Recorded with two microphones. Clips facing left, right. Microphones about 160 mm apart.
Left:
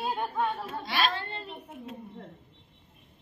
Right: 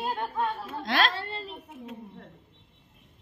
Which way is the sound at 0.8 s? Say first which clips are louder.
Right 3 dB; 90° right.